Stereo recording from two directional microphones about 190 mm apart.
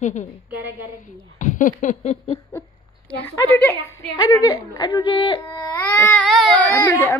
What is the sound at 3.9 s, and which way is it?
Speech, 20° left (ahead or behind).